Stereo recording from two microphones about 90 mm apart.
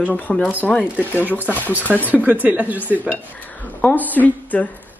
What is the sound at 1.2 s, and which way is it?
Speech, 20° right (ahead or behind).